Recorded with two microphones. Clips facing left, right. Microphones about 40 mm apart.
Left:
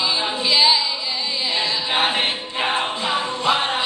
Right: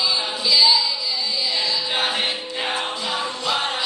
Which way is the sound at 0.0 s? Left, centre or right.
Left.